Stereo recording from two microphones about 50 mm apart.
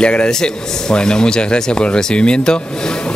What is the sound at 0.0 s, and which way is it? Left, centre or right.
Speech, centre.